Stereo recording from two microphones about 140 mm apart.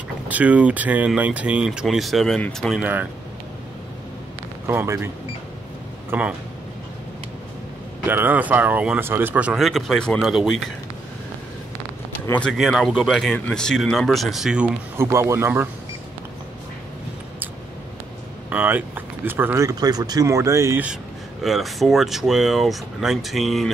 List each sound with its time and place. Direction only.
0.3 s speech: 10° right (ahead or behind); by 2.8 s 5° left (ahead or behind)
2.8 s speech: 10° right (ahead or behind)
4.6 s speech: 20° right (ahead or behind)
8.1 s speech: 15° right (ahead or behind)
12.3 s speech: 5° left (ahead or behind)
15.0 s speech: 20° right (ahead or behind)
18.5 s speech: 10° right (ahead or behind)
20.8 s speech: 5° right (ahead or behind)